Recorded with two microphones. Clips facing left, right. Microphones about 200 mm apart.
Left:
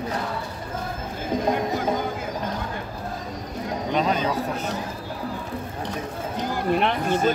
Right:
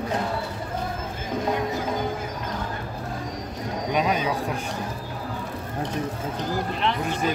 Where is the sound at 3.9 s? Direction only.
10° right (ahead or behind).